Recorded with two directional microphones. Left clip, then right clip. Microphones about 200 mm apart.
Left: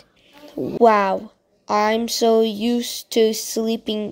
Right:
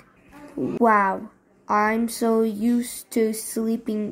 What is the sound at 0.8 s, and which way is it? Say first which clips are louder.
Speech: left 4 dB; 15° left (ahead or behind).